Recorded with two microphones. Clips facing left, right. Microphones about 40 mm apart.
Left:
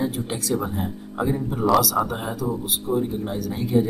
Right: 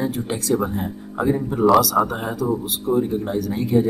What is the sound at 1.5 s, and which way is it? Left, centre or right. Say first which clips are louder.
Speech: right 4 dB; centre.